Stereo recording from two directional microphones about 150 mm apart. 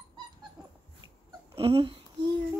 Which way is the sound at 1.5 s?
40° right (ahead or behind).